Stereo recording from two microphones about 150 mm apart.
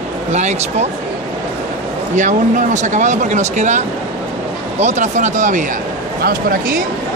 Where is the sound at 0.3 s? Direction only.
50° right (ahead or behind).